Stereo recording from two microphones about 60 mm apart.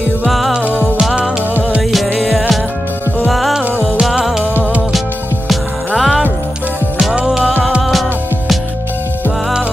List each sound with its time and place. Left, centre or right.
0.7 s music: centre
1.9 s music: centre
4.1 s music: centre
5.9 s music: centre
7.2 s music: centre